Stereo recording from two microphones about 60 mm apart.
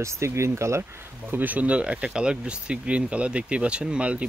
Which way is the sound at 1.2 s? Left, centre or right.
Right.